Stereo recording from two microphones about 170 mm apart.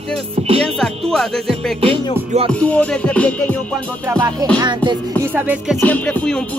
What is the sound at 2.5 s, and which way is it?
Music, 5° left (ahead or behind).